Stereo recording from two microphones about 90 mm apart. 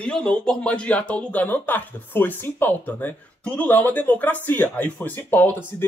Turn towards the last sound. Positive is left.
turn(degrees=25)  # may be behind; listen again after turning